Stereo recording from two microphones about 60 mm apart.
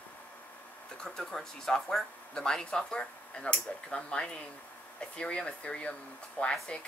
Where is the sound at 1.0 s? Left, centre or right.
Centre.